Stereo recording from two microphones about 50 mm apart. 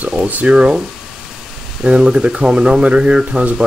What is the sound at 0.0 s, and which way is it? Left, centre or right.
Speech, right.